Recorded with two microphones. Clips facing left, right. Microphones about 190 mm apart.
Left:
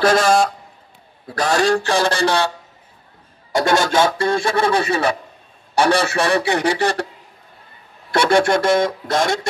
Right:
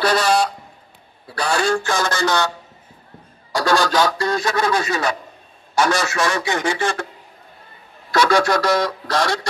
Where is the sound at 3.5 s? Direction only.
25° left (ahead or behind).